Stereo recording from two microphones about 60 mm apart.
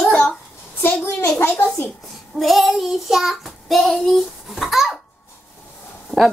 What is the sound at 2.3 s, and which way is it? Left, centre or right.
Child singing, centre.